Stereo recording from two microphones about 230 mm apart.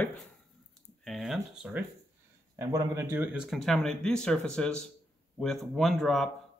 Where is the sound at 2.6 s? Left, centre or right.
Centre.